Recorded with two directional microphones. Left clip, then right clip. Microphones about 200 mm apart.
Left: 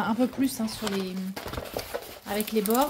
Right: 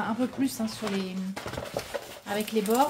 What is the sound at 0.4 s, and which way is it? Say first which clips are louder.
Speech: left 1 dB; 20° left (ahead or behind).